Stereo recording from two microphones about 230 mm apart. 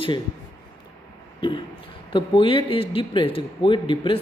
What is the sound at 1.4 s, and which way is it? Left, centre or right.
Speech, left.